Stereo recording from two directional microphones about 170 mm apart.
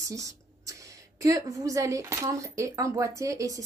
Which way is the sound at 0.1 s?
20° right (ahead or behind).